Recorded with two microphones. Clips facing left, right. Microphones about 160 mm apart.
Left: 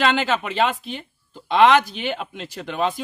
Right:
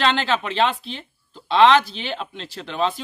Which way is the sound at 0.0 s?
10° left (ahead or behind).